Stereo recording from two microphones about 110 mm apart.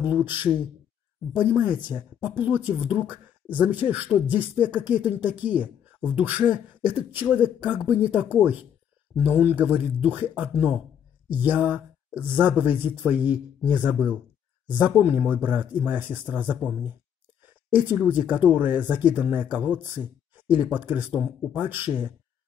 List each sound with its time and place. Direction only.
0.0 s speech: 15° right (ahead or behind)